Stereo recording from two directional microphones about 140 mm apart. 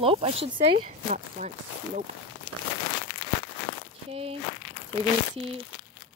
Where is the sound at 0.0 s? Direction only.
40° right (ahead or behind).